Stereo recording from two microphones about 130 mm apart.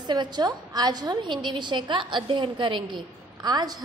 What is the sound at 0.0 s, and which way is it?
A woman's voice, 35° right (ahead or behind).